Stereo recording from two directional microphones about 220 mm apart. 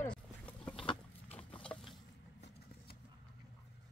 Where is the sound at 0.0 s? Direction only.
5° left (ahead or behind).